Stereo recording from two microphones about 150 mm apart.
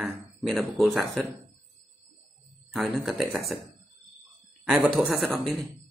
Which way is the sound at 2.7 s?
Centre (ahead or behind).